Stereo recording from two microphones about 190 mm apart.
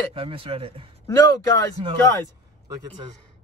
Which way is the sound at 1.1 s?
20° left (ahead or behind).